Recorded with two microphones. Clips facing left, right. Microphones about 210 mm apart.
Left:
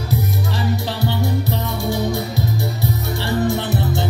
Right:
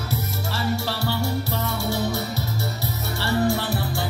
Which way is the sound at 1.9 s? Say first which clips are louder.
Left 5 dB; 15° left (ahead or behind).